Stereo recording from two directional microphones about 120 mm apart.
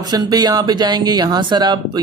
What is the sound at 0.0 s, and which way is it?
Speech, 35° right (ahead or behind).